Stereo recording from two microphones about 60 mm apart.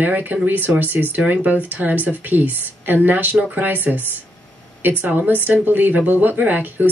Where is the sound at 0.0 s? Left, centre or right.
Right.